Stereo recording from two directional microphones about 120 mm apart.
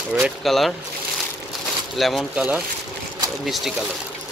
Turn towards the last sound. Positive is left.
turn(degrees=0)  # may be behind; listen again after turning